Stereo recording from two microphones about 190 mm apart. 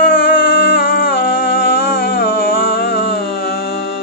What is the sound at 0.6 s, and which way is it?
Music, 50° left (ahead or behind).